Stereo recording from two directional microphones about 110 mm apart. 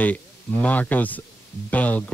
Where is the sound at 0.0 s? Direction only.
15° left (ahead or behind).